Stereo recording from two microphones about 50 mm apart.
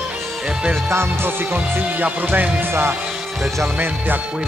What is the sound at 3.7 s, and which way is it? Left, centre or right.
Music, right.